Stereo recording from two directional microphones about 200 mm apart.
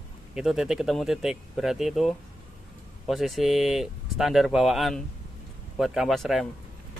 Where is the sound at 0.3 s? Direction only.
Centre (ahead or behind).